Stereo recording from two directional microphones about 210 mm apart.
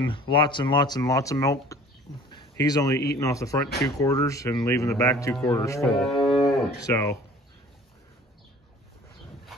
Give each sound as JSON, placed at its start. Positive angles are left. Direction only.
{"t": 0.0, "sound": "speech", "side_deg": 25}
{"t": 2.3, "sound": "a sound", "side_deg": 20}
{"t": 3.2, "sound": "speech", "side_deg": 15}
{"t": 5.9, "sound": "speech", "side_deg": 0}
{"t": 6.4, "sound": "speech", "side_deg": 15}